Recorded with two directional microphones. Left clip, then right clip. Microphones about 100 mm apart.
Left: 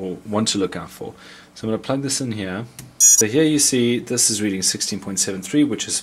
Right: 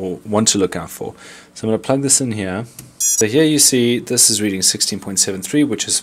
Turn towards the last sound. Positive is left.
turn(degrees=-25)  # may be behind; listen again after turning